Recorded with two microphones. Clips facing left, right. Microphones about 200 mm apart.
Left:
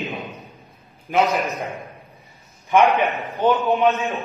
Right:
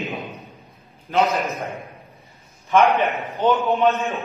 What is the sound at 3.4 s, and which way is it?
Speech, 15° left (ahead or behind).